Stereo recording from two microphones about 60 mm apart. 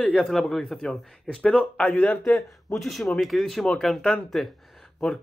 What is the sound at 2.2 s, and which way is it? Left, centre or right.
Speech, centre.